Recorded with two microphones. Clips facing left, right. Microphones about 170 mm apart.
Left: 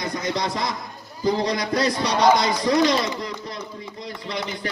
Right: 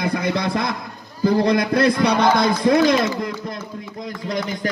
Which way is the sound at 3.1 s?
50° right (ahead or behind).